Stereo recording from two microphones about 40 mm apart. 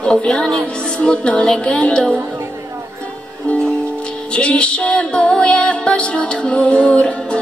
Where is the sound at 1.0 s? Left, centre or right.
Left.